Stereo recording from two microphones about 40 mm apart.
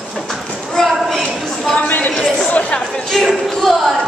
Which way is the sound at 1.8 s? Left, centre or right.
Left.